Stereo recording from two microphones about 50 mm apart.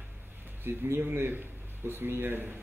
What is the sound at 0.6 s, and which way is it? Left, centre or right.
Speech, right.